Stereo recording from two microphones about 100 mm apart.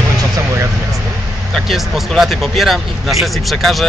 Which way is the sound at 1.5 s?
Centre (ahead or behind).